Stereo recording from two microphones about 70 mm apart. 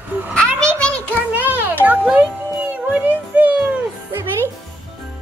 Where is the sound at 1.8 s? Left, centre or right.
Right.